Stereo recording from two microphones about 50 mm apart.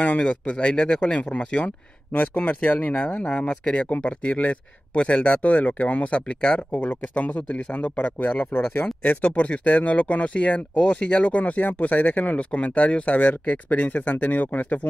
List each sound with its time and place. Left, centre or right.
0.0 s speech: left
3.3 s speech: centre; by 8.8 s left
9.0 s speech: left